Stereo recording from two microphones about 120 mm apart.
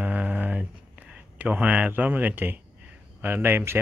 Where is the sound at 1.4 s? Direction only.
10° right (ahead or behind).